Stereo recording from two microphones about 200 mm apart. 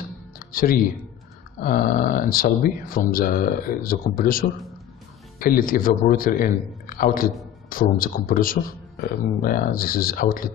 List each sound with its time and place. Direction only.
0.4 s music: 45° left (ahead or behind)
1.6 s speech: 45° left (ahead or behind)